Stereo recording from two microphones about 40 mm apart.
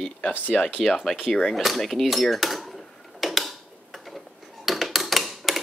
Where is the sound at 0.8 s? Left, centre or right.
Centre.